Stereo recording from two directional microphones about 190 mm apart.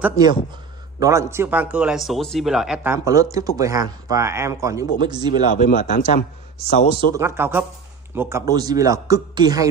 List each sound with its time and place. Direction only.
0.0 s a man's voice: 20° right (ahead or behind)
5.5 s speech: 45° left (ahead or behind)
7.2 s a man's voice: 15° right (ahead or behind)